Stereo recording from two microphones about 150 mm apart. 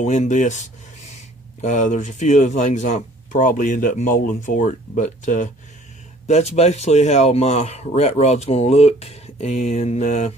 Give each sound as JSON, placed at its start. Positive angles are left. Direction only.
{"t": 0.0, "sound": "speech", "side_deg": 50}